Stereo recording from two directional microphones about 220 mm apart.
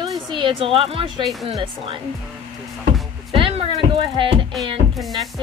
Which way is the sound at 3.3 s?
25° right (ahead or behind).